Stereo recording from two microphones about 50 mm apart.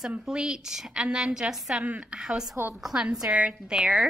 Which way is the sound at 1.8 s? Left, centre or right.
Right.